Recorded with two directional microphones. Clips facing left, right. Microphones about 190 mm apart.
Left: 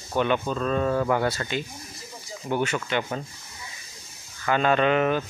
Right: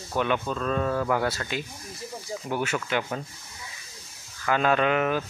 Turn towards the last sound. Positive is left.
turn(degrees=-5)  # may be behind; listen again after turning